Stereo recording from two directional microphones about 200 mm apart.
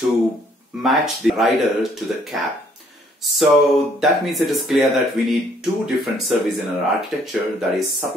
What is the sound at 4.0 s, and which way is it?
Speech, centre (ahead or behind).